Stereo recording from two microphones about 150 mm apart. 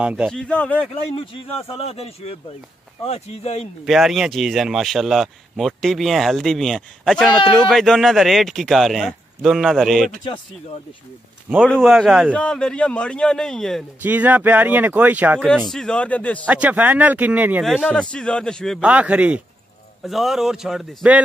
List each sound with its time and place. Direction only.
0.0 s speech: 5° right (ahead or behind)
0.3 s a man's voice: 5° left (ahead or behind)
1.1 s speech: 35° left (ahead or behind)
3.8 s speech: centre (ahead or behind)
11.6 s speech: 5° left (ahead or behind)
14.0 s speech: 10° right (ahead or behind)
15.4 s speech: 5° left (ahead or behind)
16.4 s speech: 10° right (ahead or behind)
17.8 s speech: 5° left (ahead or behind)
18.8 s speech: 10° right (ahead or behind)